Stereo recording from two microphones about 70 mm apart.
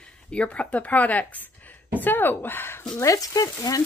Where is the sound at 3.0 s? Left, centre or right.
Left.